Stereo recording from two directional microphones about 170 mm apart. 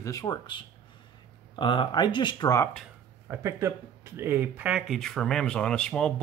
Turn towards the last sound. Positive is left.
turn(degrees=5)  # may be behind; listen again after turning